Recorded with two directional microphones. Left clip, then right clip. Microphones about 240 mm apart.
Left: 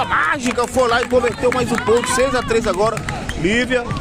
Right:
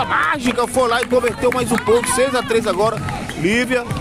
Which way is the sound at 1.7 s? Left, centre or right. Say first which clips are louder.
Even; right.